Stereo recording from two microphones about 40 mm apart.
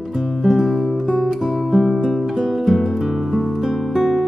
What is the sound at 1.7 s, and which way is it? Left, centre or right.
Music, centre.